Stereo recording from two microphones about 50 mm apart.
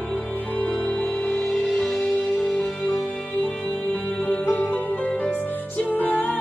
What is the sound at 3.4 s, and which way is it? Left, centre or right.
Music, left.